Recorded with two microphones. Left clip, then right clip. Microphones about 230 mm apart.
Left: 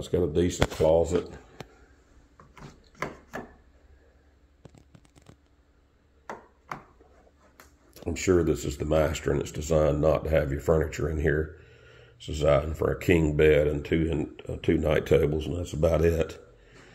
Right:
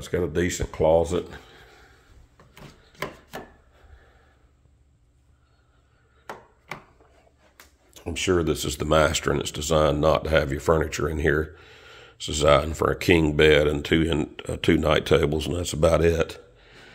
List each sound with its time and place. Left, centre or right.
0.0 s speech: centre
0.8 s speech: right
8.0 s speech: centre
8.5 s speech: right
15.4 s speech: right
15.9 s a sound: centre